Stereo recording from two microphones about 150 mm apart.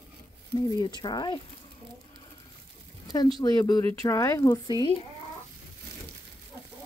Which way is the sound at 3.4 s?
25° left (ahead or behind).